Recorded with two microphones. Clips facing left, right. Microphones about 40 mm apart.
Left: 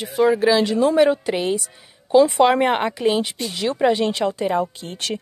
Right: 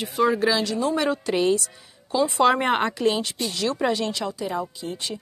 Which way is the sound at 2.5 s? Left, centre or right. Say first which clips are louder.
Left 2 dB; centre.